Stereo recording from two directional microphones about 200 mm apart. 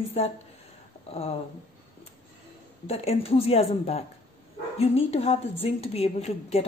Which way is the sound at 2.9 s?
30° left (ahead or behind).